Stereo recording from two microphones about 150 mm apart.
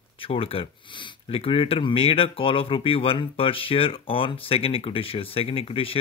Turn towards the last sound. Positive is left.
turn(degrees=40)  # may be behind; listen again after turning